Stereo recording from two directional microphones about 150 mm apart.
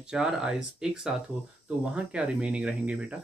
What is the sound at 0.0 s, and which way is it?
Speech, 5° right (ahead or behind).